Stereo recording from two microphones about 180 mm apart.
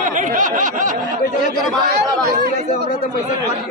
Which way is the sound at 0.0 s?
45° right (ahead or behind).